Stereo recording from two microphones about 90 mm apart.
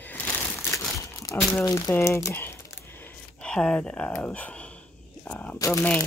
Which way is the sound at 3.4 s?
10° left (ahead or behind).